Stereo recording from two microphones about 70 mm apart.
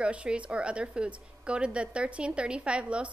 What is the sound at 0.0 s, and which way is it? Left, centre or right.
Speech, centre.